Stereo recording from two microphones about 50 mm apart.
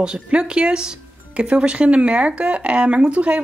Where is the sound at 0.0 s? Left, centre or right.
Centre.